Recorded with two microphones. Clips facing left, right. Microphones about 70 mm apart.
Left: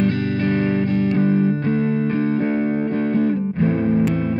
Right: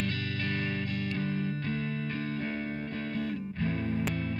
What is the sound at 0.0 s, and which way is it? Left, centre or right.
Music, left.